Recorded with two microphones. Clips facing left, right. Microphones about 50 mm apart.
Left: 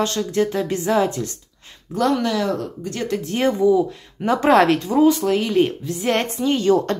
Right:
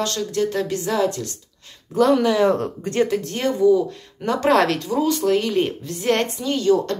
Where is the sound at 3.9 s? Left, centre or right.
Centre.